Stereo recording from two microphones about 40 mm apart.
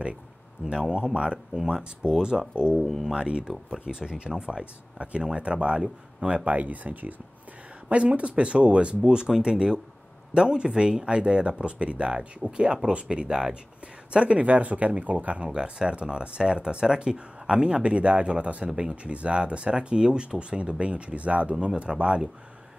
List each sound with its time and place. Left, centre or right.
0.7 s speech: right
2.8 s speech: centre
3.1 s speech: right
7.9 s speech: right